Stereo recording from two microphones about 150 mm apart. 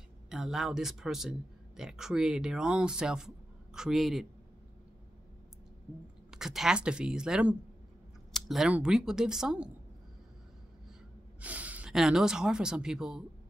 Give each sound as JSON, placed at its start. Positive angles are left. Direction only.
{"t": 0.3, "sound": "speech", "side_deg": -5}
{"t": 6.3, "sound": "speech", "side_deg": 0}
{"t": 11.4, "sound": "speech", "side_deg": -10}